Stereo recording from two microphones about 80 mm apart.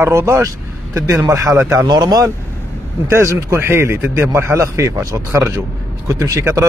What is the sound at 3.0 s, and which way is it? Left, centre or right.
Speech, right.